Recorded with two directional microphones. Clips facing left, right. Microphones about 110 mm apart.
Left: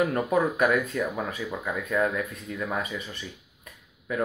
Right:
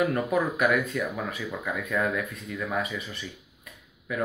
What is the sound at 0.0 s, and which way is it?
Mantra, 30° left (ahead or behind).